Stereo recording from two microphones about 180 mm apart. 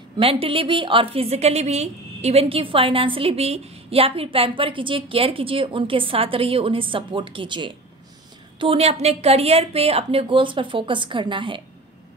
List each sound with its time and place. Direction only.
0.2 s a woman's voice: 30° right (ahead or behind)